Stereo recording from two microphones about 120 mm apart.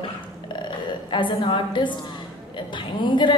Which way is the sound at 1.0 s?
40° left (ahead or behind).